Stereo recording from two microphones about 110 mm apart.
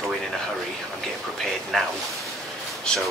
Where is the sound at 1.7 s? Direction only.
5° left (ahead or behind).